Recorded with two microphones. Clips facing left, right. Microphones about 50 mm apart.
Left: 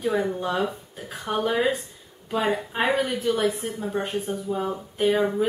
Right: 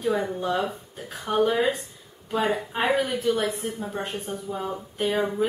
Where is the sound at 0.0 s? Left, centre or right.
Centre.